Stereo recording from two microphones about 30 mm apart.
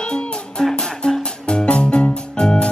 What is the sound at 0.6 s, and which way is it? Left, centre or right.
Music, centre.